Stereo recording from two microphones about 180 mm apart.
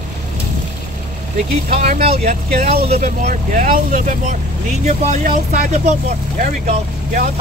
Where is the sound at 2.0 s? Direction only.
35° right (ahead or behind).